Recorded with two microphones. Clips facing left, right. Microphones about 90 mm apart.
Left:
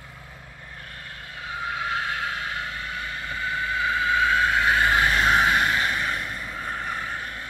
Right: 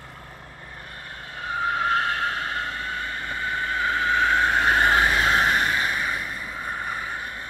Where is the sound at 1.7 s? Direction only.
45° right (ahead or behind).